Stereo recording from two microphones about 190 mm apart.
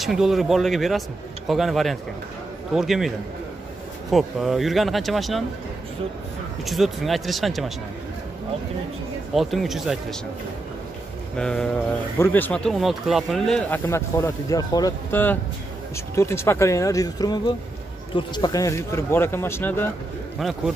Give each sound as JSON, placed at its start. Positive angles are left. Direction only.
{"t": 0.0, "sound": "speech", "side_deg": 0}
{"t": 4.1, "sound": "speech", "side_deg": 0}
{"t": 6.6, "sound": "speech", "side_deg": 0}
{"t": 9.3, "sound": "speech", "side_deg": 0}
{"t": 11.3, "sound": "speech", "side_deg": 5}
{"t": 13.8, "sound": "speech", "side_deg": 15}
{"t": 20.3, "sound": "speech", "side_deg": 0}